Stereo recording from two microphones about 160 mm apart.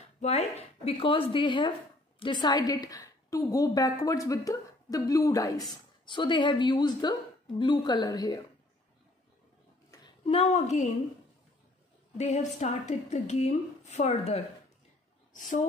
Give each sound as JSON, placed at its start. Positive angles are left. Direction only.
{"t": 0.2, "sound": "a woman's voice", "side_deg": 40}
{"t": 10.2, "sound": "a woman's voice", "side_deg": 40}
{"t": 12.2, "sound": "a woman's voice", "side_deg": 45}